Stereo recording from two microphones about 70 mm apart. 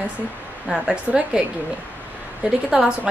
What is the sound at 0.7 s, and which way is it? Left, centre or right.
Speech, centre.